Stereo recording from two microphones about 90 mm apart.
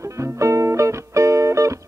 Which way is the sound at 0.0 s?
35° right (ahead or behind).